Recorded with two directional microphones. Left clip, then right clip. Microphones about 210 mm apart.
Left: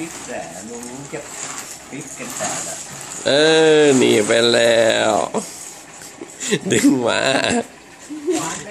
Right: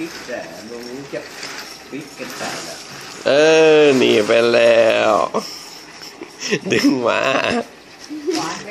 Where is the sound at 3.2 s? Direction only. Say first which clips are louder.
Right 2 dB; 15° left (ahead or behind).